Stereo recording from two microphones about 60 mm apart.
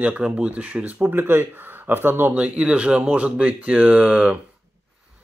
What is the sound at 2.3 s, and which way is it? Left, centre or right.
Speech, centre.